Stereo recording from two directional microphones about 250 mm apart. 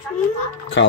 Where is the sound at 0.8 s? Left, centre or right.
Left.